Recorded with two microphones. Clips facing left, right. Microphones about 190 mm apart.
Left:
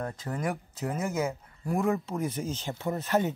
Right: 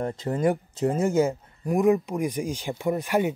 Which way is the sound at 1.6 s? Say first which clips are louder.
Right 7 dB; 15° right (ahead or behind).